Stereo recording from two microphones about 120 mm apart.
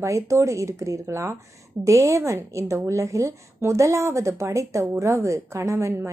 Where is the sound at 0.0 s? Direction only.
25° right (ahead or behind).